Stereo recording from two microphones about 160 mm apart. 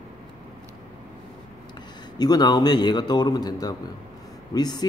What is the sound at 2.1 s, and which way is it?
A man's voice, 25° left (ahead or behind).